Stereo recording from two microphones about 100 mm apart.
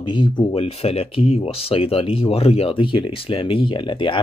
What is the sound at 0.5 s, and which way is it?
Speech, 85° left.